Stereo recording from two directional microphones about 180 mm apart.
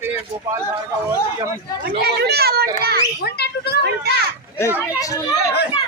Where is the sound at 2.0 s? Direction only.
65° right (ahead or behind).